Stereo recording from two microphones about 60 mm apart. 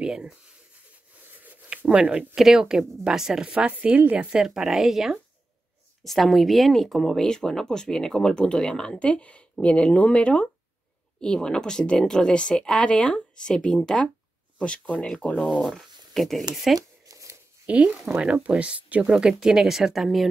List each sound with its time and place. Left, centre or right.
0.0 s rub: centre
1.2 s a sound: right
1.9 s speech: centre
2.3 s speech: centre
4.4 s speech: centre
15.3 s speech: centre
17.0 s shuffling cards: right
17.6 s speech: right; by 20.2 s centre